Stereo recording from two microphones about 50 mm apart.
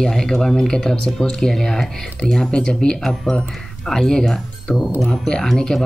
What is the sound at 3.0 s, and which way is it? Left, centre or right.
Speech, centre.